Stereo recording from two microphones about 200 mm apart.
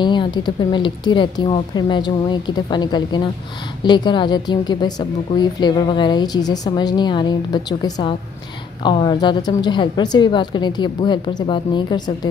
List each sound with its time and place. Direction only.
0.0 s a woman's voice: 20° left (ahead or behind)